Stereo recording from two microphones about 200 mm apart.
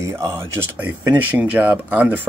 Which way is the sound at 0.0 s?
15° right (ahead or behind).